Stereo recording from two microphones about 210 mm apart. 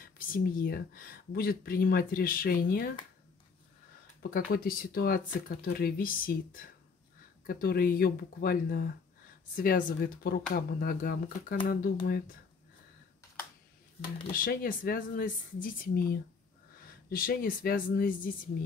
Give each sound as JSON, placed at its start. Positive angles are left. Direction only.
{"t": 0.0, "sound": "speech", "side_deg": 45}
{"t": 4.2, "sound": "speech", "side_deg": 45}
{"t": 14.3, "sound": "speech", "side_deg": 40}
{"t": 17.1, "sound": "speech", "side_deg": 45}